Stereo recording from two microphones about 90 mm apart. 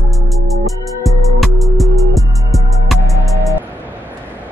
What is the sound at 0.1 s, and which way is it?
Music, centre (ahead or behind).